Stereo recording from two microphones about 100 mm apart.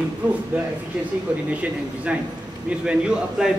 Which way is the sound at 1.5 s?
15° right (ahead or behind).